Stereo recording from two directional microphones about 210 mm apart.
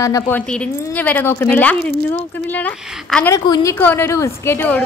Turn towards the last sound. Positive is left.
turn(degrees=10)  # may be behind; listen again after turning